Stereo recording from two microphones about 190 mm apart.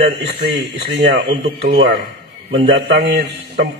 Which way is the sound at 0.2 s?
60° right (ahead or behind).